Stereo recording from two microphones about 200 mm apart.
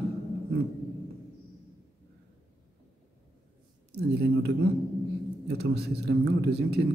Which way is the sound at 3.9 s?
55° right (ahead or behind).